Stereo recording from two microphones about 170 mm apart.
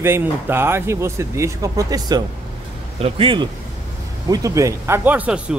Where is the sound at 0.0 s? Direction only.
15° right (ahead or behind); by 3.4 s 30° right (ahead or behind).